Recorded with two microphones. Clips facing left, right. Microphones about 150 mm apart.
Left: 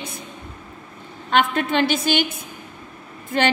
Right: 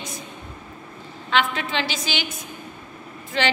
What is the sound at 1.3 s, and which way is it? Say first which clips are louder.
A woman's voice: left 4 dB; 50° left (ahead or behind).